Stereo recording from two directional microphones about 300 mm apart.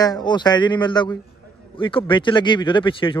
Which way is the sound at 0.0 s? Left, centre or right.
Centre.